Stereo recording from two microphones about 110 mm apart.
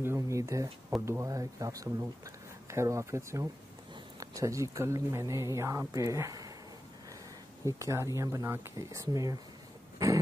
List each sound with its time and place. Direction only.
0.0 s a sound: 25° right (ahead or behind)
1.0 s speech: 30° right (ahead or behind)
7.6 s speech: 25° right (ahead or behind)